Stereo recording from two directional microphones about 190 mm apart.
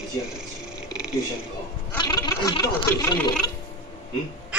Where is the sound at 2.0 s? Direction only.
20° left (ahead or behind).